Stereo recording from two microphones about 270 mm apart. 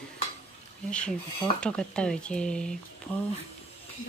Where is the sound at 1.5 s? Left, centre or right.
Centre.